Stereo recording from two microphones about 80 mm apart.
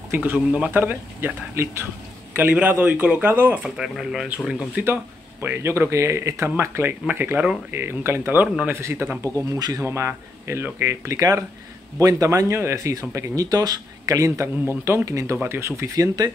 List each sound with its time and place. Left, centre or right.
0.1 s speech: right
2.3 s speech: centre
3.7 s speech: centre
4.8 s speech: right
9.4 s speech: right
9.8 s speech: right
15.3 s speech: right